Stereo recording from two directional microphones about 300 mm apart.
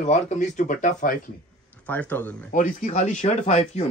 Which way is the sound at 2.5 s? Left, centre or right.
Left.